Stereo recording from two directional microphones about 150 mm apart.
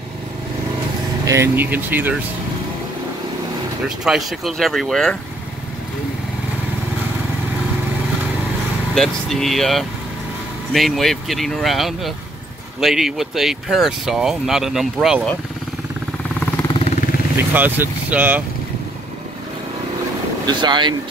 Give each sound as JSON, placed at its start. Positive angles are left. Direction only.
{"t": 1.2, "sound": "speech", "side_deg": -20}
{"t": 4.0, "sound": "speech", "side_deg": 0}
{"t": 8.9, "sound": "speech", "side_deg": 5}
{"t": 17.4, "sound": "speech", "side_deg": -15}
{"t": 20.4, "sound": "speech", "side_deg": -30}